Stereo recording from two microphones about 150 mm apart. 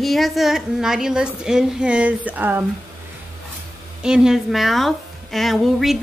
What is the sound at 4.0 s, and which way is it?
A woman's voice, 5° right (ahead or behind).